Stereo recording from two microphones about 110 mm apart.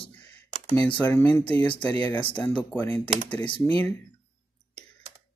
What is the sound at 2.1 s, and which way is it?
Speech, 45° left (ahead or behind).